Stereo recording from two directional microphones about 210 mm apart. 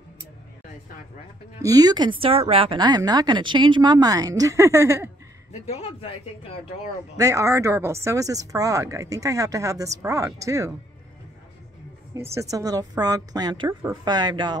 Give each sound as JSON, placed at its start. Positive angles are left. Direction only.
{"t": 1.6, "sound": "a woman's voice", "side_deg": -15}
{"t": 5.5, "sound": "speech", "side_deg": 30}
{"t": 7.2, "sound": "a woman's voice", "side_deg": -15}
{"t": 12.4, "sound": "a woman's voice", "side_deg": -15}